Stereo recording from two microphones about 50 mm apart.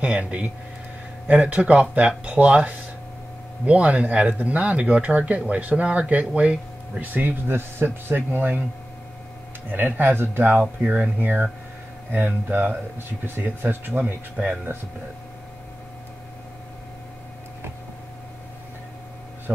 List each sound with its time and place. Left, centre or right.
0.0 s speech: right
9.7 s speech: right
10.6 s speech: right
11.1 s speech: right
12.4 s speech: right